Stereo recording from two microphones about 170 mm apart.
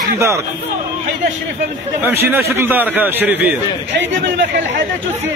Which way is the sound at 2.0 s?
15° right (ahead or behind).